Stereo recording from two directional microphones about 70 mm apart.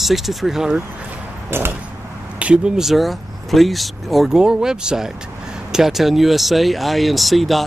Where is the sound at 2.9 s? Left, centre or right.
Centre.